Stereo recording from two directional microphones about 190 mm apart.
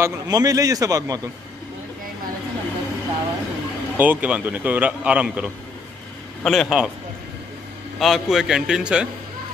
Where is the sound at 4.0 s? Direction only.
10° right (ahead or behind).